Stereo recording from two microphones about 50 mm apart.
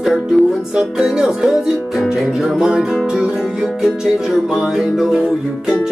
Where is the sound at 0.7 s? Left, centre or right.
Centre.